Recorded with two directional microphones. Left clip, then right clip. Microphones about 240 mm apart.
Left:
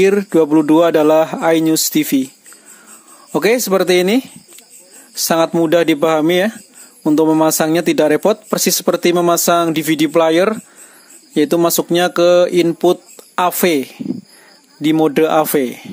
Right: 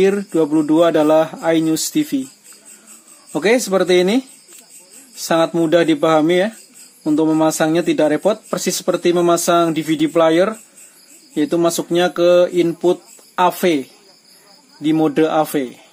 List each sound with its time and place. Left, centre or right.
0.0 s speech: left
3.3 s speech: left